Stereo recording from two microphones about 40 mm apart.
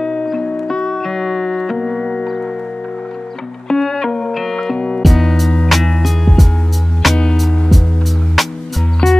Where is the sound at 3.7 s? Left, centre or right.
Centre.